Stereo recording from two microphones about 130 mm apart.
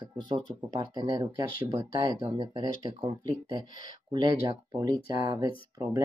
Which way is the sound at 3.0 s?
30° right (ahead or behind).